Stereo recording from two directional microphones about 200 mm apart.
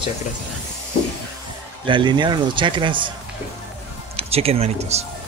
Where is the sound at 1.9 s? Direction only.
25° right (ahead or behind).